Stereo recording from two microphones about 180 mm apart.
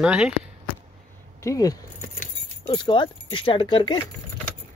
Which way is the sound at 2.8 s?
25° left (ahead or behind).